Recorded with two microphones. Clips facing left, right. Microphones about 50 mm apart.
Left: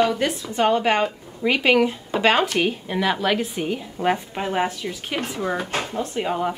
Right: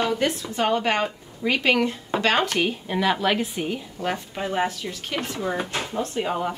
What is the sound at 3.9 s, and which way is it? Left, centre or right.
A woman's voice, left.